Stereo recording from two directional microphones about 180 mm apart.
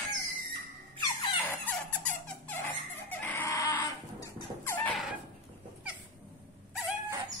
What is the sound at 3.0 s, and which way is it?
Chicken, 10° left (ahead or behind).